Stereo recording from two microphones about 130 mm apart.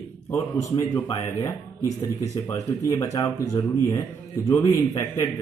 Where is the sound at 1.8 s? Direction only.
60° left (ahead or behind).